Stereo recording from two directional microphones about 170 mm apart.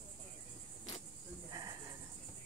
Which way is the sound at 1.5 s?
20° right (ahead or behind).